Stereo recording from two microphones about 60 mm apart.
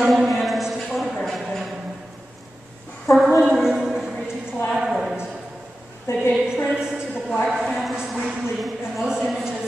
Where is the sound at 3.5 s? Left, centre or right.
Centre.